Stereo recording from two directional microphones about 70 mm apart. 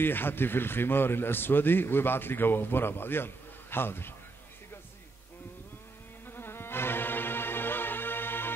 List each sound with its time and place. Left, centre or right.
0.0 s speech: left
6.2 s music: left